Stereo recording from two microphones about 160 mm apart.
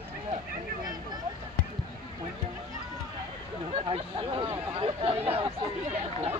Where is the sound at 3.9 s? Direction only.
35° right (ahead or behind).